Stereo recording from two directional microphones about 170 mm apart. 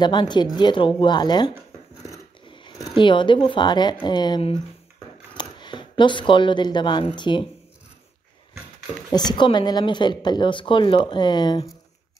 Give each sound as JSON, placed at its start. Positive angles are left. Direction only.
{"t": 0.0, "sound": "speech", "side_deg": 25}
{"t": 2.4, "sound": "a sound", "side_deg": 30}
{"t": 2.9, "sound": "speech", "side_deg": 30}
{"t": 9.1, "sound": "speech", "side_deg": 25}